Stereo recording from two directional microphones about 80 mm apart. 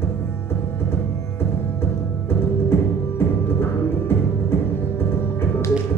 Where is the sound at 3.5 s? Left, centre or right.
Left.